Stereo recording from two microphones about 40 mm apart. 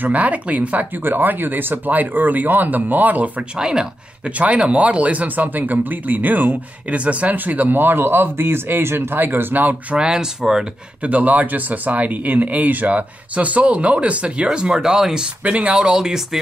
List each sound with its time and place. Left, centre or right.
0.0 s speech: right
0.9 s speech: right
1.9 s speech: right
3.5 s speech: centre
4.3 s speech: right
6.9 s speech: right
9.2 s speech: right
9.9 s speech: centre
11.0 s speech: right; by 15.2 s centre
15.2 s speech: right
15.8 s speech: centre